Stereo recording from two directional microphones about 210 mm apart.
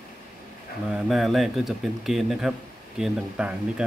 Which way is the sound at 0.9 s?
Centre (ahead or behind).